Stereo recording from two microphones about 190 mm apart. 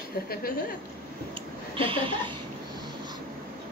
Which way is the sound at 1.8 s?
30° right (ahead or behind).